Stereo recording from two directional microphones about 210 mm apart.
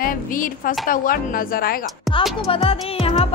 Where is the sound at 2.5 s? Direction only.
25° left (ahead or behind).